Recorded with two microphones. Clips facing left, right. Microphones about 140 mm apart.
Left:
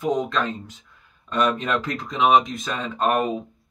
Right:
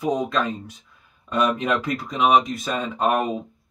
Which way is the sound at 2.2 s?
Centre (ahead or behind).